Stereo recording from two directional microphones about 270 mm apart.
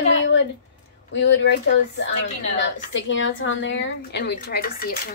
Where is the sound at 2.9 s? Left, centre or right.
Left.